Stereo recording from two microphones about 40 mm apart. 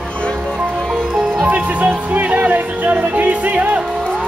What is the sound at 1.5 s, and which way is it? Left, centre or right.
Music, right.